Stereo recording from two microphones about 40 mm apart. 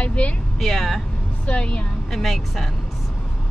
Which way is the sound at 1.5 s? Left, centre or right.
Left.